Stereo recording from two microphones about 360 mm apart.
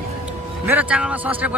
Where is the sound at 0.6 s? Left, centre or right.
Centre.